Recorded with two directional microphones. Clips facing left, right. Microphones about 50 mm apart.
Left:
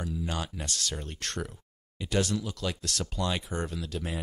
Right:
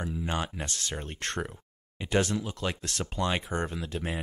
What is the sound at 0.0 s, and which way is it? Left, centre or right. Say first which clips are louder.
Speech: right 2 dB; right.